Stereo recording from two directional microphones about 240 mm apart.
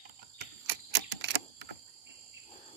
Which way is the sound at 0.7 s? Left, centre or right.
Right.